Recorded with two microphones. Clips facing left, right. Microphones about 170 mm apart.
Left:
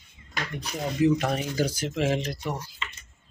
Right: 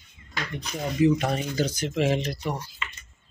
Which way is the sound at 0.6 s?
10° left (ahead or behind).